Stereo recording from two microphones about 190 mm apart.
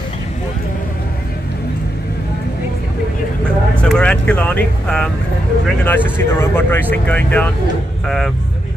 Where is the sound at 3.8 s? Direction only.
5° left (ahead or behind).